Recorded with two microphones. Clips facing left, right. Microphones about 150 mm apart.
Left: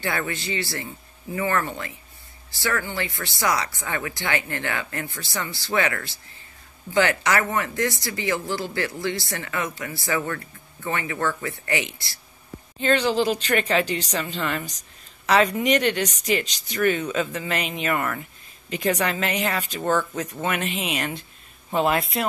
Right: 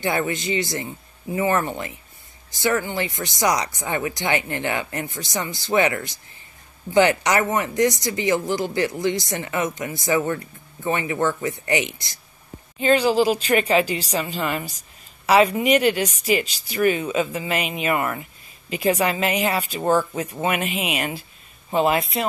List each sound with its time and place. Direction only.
0.0 s speech: 20° right (ahead or behind); by 22.2 s centre (ahead or behind)